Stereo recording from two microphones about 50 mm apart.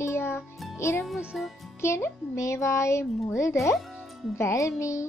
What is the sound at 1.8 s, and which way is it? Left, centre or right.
A child's voice, left.